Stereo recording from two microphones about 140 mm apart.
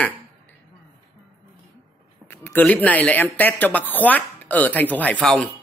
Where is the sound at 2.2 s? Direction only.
15° left (ahead or behind).